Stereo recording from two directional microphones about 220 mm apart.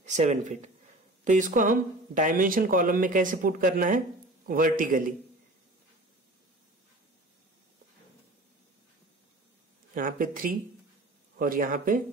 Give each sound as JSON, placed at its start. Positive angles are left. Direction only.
{"t": 0.0, "sound": "speech", "side_deg": -30}
{"t": 9.9, "sound": "speech", "side_deg": -40}